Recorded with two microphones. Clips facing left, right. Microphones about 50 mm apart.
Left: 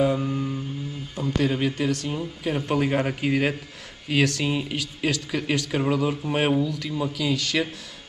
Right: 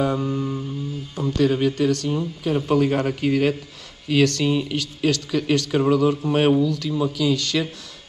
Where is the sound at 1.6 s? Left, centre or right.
Centre.